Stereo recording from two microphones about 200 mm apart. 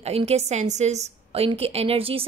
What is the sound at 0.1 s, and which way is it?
A woman's voice, 30° right (ahead or behind).